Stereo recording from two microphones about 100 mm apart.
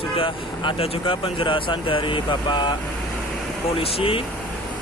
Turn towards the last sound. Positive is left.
turn(degrees=65)  # may be behind; listen again after turning